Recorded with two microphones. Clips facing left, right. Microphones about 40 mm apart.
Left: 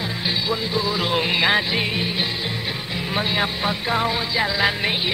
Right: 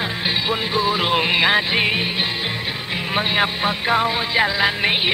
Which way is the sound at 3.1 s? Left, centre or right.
Right.